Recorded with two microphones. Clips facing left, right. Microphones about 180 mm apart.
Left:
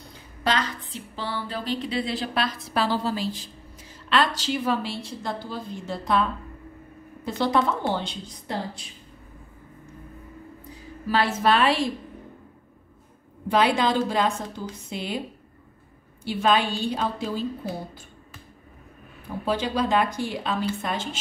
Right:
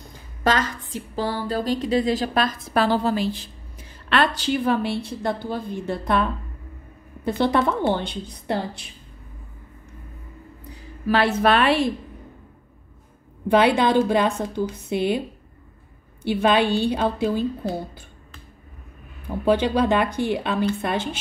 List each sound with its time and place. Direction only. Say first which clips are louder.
0.4 s a woman's voice: right 4 dB; 45° right (ahead or behind)
7.2 s a woman's voice: right 3 dB; 60° right (ahead or behind)
11.1 s a woman's voice: right 3 dB; 60° right (ahead or behind)
13.5 s a woman's voice: right 4 dB; 60° right (ahead or behind)
16.3 s a woman's voice: right 4 dB; 60° right (ahead or behind)
19.4 s a woman's voice: right 6 dB; 60° right (ahead or behind)